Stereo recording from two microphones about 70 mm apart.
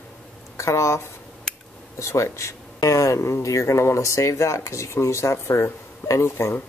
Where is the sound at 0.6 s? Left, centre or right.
Left.